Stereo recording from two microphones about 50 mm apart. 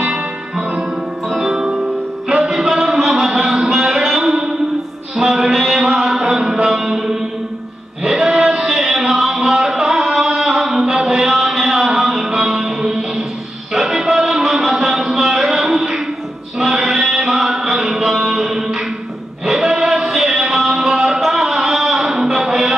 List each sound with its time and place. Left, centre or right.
0.0 s music: centre
2.5 s a sound: centre
6.2 s music: centre